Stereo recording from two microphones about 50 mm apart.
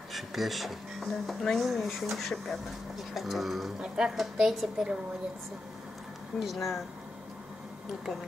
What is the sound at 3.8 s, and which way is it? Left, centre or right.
Speech, centre.